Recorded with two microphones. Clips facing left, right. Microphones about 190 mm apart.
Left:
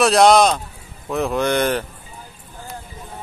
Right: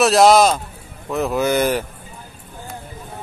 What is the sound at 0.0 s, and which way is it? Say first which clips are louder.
A man's voice: right 1 dB; centre (ahead or behind).